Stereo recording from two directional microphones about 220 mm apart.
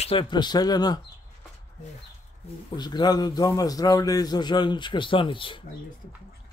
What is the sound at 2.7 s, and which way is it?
A man's voice, 20° left (ahead or behind).